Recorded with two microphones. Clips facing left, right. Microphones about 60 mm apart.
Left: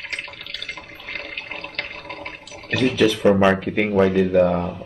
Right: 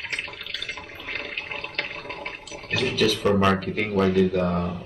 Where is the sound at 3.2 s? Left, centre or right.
Centre.